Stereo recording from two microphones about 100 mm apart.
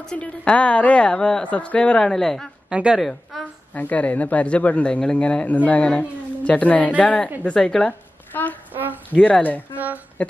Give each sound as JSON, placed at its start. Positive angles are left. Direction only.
{"t": 0.0, "sound": "speech", "side_deg": 10}
{"t": 2.7, "sound": "a woman's voice", "side_deg": -10}
{"t": 3.3, "sound": "a sound", "side_deg": 0}
{"t": 3.7, "sound": "speech", "side_deg": 15}
{"t": 8.3, "sound": "a sound", "side_deg": 20}
{"t": 9.1, "sound": "speech", "side_deg": 15}